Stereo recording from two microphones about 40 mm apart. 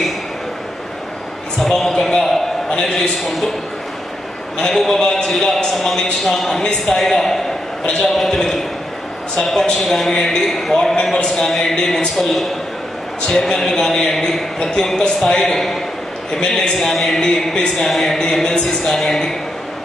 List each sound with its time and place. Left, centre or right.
1.6 s a sound: centre
4.7 s a man's voice: centre
11.2 s speech: centre
11.7 s a man's voice: centre
13.3 s a man's voice: centre
15.4 s a man's voice: centre
16.3 s a man's voice: left
16.7 s a man's voice: centre
18.1 s a man's voice: centre